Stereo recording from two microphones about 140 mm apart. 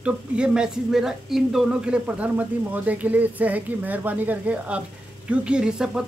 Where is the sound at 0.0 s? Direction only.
5° right (ahead or behind).